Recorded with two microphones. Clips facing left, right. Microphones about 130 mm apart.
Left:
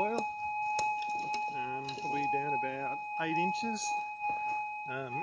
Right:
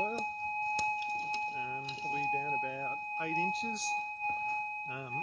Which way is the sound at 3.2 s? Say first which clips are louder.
Left 3 dB; 90° left.